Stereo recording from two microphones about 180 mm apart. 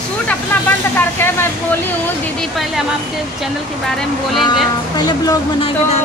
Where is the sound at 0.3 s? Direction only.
10° left (ahead or behind).